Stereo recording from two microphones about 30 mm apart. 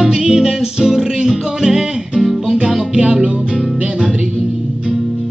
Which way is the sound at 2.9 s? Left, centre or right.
Right.